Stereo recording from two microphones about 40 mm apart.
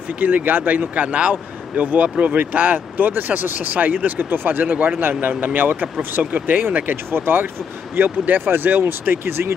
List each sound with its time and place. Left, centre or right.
0.2 s speech: right
7.1 s speech: right